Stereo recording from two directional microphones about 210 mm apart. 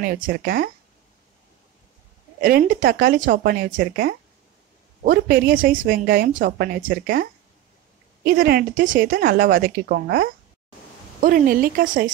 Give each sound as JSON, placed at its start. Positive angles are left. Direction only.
{"t": 0.0, "sound": "a woman's voice", "side_deg": -45}
{"t": 2.4, "sound": "a woman's voice", "side_deg": -45}